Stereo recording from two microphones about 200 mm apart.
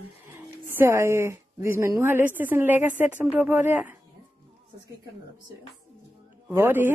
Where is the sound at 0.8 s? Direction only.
10° right (ahead or behind).